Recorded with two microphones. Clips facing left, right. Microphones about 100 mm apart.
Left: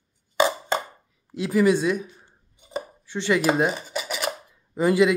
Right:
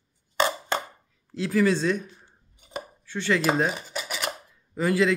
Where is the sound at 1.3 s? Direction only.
15° left (ahead or behind).